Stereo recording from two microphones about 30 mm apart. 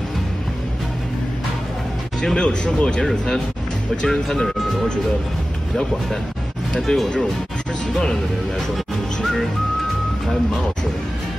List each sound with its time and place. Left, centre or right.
2.3 s speech: left
4.1 s speech: centre
6.9 s speech: left
9.2 s whistling: centre